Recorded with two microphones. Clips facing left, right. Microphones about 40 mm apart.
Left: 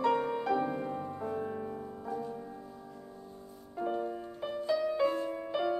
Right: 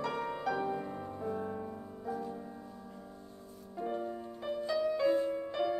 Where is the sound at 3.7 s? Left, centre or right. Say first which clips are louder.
Left 3 dB; centre.